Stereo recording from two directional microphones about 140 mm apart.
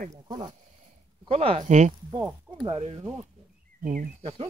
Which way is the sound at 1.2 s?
45° right (ahead or behind).